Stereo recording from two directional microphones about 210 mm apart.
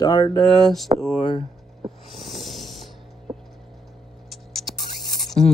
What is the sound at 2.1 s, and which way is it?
Snoring, centre (ahead or behind).